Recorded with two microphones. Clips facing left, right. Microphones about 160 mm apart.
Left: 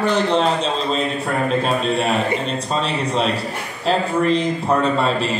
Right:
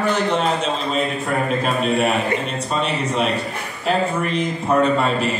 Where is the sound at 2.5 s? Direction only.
35° left (ahead or behind).